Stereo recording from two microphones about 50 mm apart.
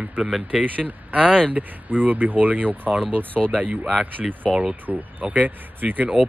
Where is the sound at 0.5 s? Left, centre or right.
Centre.